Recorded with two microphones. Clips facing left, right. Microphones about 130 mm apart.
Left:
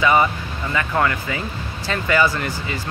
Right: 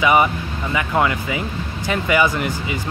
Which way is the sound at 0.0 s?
15° right (ahead or behind).